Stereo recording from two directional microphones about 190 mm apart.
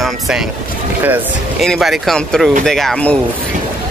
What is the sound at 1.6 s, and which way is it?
Speech, centre (ahead or behind).